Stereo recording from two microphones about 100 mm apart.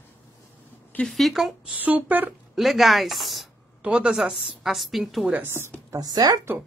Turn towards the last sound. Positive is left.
turn(degrees=-40)  # may be behind; listen again after turning